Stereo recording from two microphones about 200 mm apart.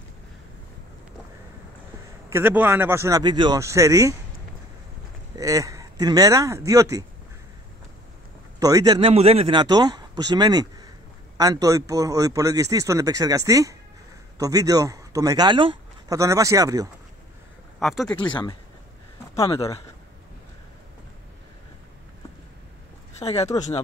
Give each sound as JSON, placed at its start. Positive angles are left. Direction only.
{"t": 2.3, "sound": "a man's voice", "side_deg": -10}
{"t": 5.3, "sound": "speech", "side_deg": -15}
{"t": 8.5, "sound": "a man's voice", "side_deg": -15}
{"t": 9.1, "sound": "a man's voice", "side_deg": -30}
{"t": 17.7, "sound": "speech", "side_deg": 0}
{"t": 18.2, "sound": "speech", "side_deg": 25}
{"t": 23.1, "sound": "speech", "side_deg": 30}